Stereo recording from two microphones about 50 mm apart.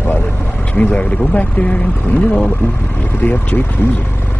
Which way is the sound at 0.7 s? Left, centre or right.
Left.